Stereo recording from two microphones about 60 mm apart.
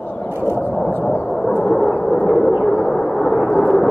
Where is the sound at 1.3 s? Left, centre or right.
Centre.